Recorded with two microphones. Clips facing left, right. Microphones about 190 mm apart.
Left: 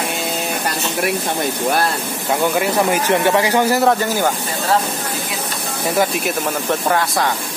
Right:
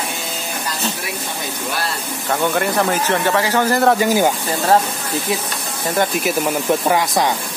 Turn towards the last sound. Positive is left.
turn(degrees=-20)  # may be behind; listen again after turning